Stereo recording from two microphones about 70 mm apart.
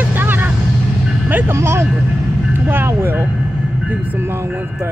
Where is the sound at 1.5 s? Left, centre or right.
Right.